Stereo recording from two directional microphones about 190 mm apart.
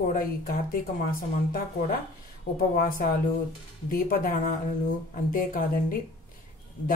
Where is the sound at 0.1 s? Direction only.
50° left (ahead or behind).